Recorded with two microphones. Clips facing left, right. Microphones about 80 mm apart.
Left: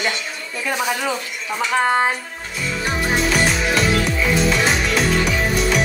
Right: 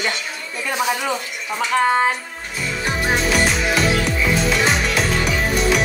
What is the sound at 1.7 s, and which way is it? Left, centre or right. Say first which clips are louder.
Music: right 1 dB; centre.